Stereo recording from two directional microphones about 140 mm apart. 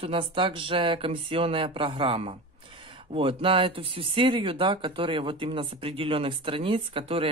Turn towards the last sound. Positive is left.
turn(degrees=-40)  # may be behind; listen again after turning